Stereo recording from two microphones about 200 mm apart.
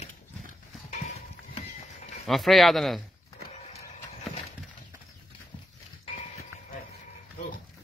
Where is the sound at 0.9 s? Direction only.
35° left (ahead or behind).